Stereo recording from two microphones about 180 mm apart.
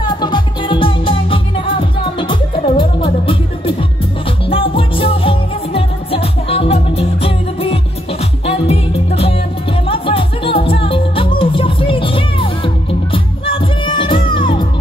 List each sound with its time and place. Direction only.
0.0 s music: 25° left (ahead or behind)